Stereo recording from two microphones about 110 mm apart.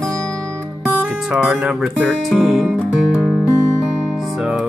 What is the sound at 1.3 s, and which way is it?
Speech, 5° right (ahead or behind).